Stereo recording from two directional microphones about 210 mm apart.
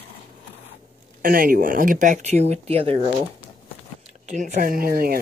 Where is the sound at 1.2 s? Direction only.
45° right (ahead or behind); by 3.1 s 30° right (ahead or behind).